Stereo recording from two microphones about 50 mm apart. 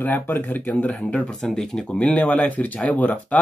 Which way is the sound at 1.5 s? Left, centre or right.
Centre.